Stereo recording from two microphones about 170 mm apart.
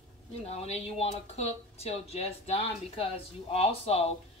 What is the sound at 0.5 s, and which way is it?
Speech, 35° left (ahead or behind).